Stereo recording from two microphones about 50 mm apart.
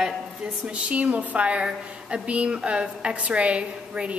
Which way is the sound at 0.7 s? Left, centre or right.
Right.